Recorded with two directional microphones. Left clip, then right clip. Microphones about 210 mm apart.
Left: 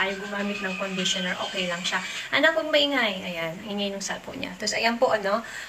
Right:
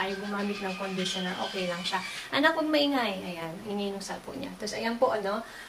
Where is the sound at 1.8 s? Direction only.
10° right (ahead or behind).